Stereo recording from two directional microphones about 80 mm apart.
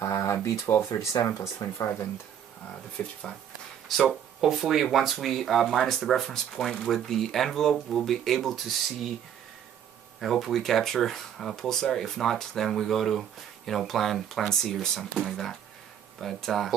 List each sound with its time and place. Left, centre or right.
0.0 s a sound: left
1.2 s speech: left
3.0 s speech: centre
3.9 s speech: centre
10.2 s speech: centre